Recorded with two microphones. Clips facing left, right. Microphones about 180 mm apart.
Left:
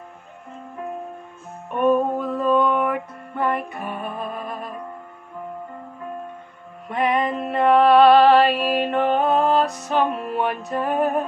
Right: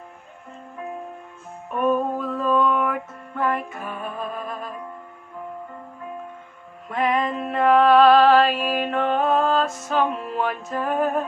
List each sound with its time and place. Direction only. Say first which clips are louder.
1.7 s music: left 3 dB; centre (ahead or behind)
6.9 s music: left 1 dB; centre (ahead or behind)